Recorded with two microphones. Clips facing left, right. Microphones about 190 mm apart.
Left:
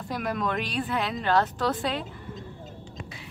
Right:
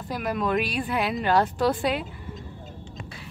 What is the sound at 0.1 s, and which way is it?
A woman's voice, 5° right (ahead or behind).